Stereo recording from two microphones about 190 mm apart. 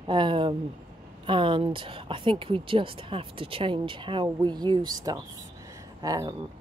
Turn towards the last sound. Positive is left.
turn(degrees=-20)  # may be behind; listen again after turning